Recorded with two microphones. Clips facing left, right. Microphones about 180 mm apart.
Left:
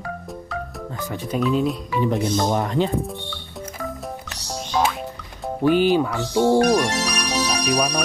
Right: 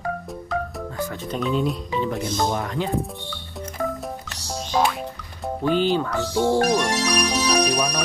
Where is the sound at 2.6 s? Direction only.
30° left (ahead or behind).